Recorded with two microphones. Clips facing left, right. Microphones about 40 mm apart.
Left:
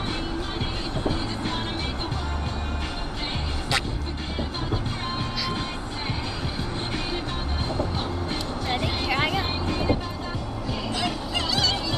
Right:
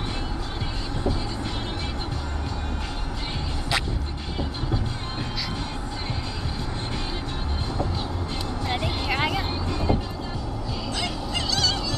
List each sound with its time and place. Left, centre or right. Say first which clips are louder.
8.6 s music: even; centre
9.0 s vehicle: even; centre
9.7 s music: left 1 dB; left
11.3 s music: even; centre